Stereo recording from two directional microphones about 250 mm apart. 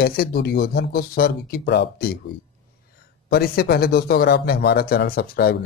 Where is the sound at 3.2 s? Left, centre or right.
Left.